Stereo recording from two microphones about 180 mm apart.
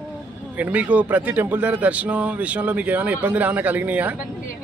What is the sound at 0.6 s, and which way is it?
A man's voice, 10° right (ahead or behind).